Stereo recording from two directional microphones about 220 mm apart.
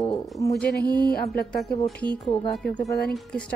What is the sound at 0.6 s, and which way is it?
Speech, 45° left (ahead or behind).